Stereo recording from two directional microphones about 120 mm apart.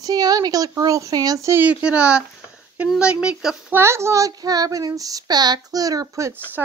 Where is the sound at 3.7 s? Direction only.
20° right (ahead or behind).